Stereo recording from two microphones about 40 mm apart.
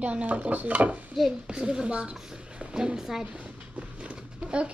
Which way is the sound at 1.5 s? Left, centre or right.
Right.